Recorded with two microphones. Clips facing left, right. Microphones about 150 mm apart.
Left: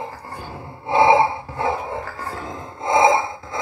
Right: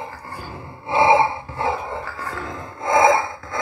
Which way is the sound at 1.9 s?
40° left (ahead or behind).